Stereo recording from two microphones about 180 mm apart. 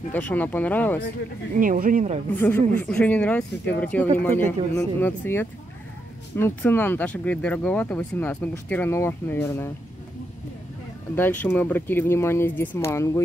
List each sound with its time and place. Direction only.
0.1 s speech: 10° left (ahead or behind)
1.6 s speech: 50° right (ahead or behind)
2.3 s speech: 10° left (ahead or behind)
11.1 s speech: 10° left (ahead or behind)